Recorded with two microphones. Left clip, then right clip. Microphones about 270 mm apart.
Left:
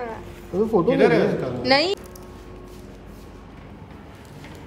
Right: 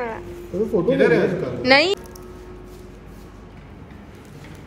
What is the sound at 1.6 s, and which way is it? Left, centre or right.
Speech, centre.